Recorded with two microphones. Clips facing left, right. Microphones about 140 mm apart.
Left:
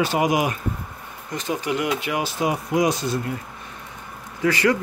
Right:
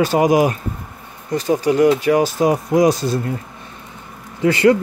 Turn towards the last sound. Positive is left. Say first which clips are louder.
# right 6 dB
turn(degrees=-25)  # may be behind; listen again after turning